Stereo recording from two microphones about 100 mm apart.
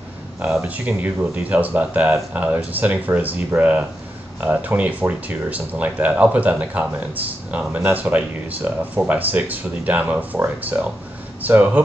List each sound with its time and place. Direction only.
0.6 s speech: 15° right (ahead or behind)